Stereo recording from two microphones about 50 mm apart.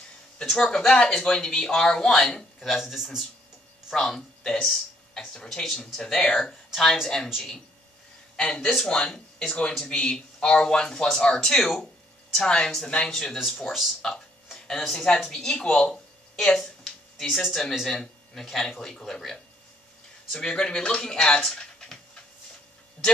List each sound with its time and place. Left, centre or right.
0.4 s a man's voice: centre
3.9 s a man's voice: centre
6.7 s speech: centre
8.4 s a man's voice: centre
8.6 s speech: centre
8.9 s a man's voice: centre